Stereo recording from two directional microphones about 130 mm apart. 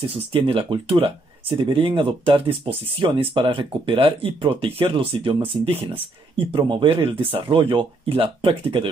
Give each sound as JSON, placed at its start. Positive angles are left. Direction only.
{"t": 0.3, "sound": "speech", "side_deg": -40}